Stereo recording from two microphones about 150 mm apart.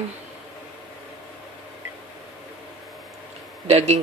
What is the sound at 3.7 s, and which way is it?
Speech, 45° right (ahead or behind).